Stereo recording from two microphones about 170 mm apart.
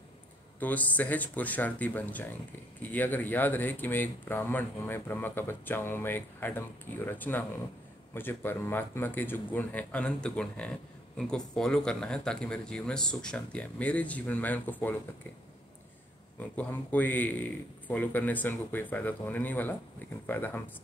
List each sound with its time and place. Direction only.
0.6 s speech: 10° left (ahead or behind)
16.3 s speech: 10° left (ahead or behind)